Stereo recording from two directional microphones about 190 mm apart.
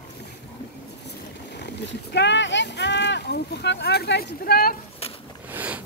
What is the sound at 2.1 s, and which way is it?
Speech, 65° left (ahead or behind).